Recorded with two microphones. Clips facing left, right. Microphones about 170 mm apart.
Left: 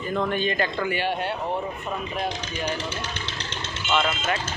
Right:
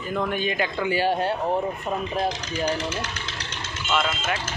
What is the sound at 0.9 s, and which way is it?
Speech, 35° right (ahead or behind).